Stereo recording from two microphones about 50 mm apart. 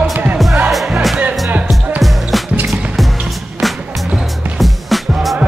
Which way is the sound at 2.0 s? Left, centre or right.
Centre.